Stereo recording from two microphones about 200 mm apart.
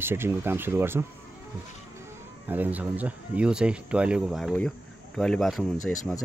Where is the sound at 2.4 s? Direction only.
10° right (ahead or behind).